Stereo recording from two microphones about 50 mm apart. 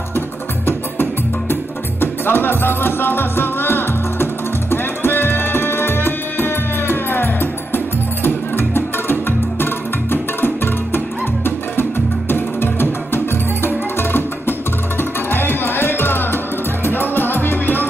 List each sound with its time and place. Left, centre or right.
1.5 s music: left
12.3 s music: left